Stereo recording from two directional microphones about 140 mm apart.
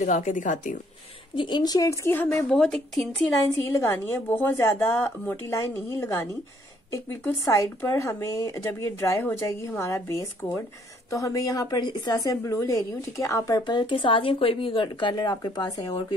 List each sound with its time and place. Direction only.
0.0 s speech: 60° left (ahead or behind)
1.3 s a woman's voice: 35° left (ahead or behind); by 2.4 s 15° left (ahead or behind)
2.5 s speech: 5° left (ahead or behind)
3.8 s a woman's voice: 15° left (ahead or behind)